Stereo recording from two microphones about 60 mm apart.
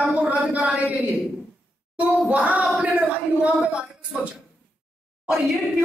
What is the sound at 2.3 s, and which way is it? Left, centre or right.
Speech, right.